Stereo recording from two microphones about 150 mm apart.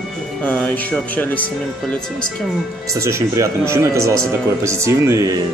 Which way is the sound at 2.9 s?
20° right (ahead or behind).